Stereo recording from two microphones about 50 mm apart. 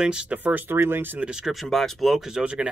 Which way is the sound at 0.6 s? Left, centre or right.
Right.